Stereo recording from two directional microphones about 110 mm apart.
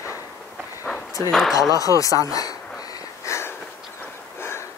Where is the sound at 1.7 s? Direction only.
30° left (ahead or behind).